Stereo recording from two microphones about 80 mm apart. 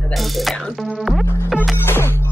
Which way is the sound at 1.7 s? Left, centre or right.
Left.